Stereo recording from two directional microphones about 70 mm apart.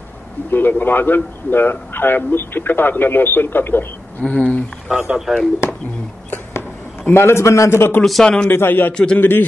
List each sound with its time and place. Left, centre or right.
0.5 s a man's voice: left
4.2 s speech: centre
4.8 s speech: centre
7.1 s a man's voice: left
8.0 s speech: centre
8.5 s a man's voice: left
8.9 s speech: centre
9.2 s a man's voice: left